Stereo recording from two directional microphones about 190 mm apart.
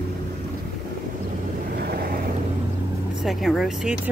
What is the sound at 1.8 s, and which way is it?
Vehicle, 55° right (ahead or behind).